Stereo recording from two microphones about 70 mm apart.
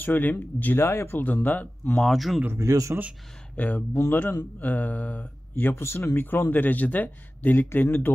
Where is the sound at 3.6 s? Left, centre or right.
Centre.